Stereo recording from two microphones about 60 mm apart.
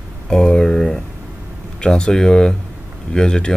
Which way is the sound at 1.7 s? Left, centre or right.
Centre.